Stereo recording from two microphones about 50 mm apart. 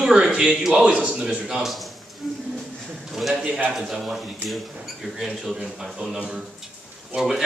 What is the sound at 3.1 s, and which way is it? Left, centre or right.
Speech, centre.